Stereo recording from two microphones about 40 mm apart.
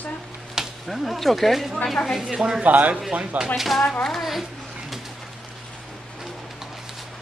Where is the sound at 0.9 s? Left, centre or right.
Centre.